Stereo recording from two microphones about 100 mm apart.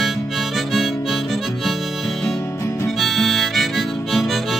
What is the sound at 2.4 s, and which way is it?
Music, 30° left (ahead or behind).